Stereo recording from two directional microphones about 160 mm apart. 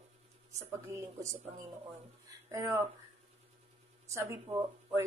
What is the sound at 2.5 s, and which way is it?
Speech, 15° right (ahead or behind).